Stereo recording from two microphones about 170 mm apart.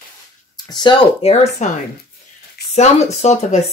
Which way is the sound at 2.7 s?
40° left (ahead or behind).